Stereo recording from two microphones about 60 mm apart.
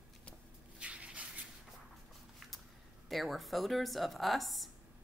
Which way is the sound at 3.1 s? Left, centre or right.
Centre.